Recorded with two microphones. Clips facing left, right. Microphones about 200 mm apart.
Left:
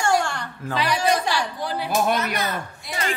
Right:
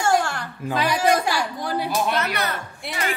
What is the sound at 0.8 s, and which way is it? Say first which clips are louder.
Speech: right 2 dB; 10° right (ahead or behind).